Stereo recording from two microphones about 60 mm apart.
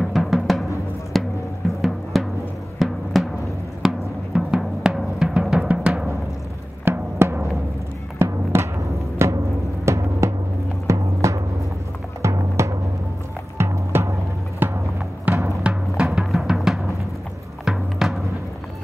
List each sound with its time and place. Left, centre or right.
0.0 s music: centre
6.8 s music: right
14.6 s music: right
16.1 s music: centre